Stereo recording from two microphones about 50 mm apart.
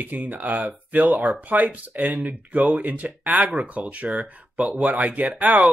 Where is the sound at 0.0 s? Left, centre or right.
Right.